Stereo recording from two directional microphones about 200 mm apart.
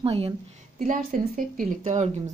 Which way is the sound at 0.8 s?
40° right (ahead or behind).